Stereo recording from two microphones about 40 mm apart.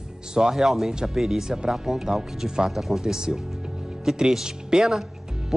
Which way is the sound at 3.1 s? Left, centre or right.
Centre.